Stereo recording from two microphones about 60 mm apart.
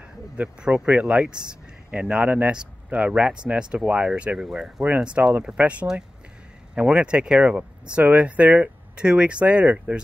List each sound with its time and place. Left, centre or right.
0.4 s speech: centre
4.5 s speech: centre
5.0 s speech: centre